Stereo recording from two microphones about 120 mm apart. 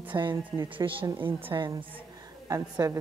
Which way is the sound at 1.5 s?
30° right (ahead or behind).